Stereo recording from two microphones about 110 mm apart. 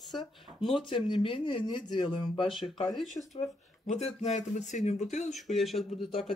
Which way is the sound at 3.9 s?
90° left.